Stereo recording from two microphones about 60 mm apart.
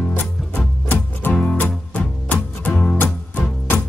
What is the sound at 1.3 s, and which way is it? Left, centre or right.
Music, left.